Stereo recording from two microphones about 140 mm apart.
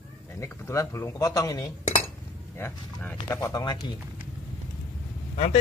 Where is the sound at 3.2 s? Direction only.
20° left (ahead or behind).